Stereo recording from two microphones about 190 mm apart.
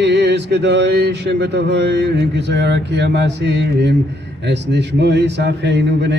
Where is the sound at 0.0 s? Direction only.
65° right (ahead or behind).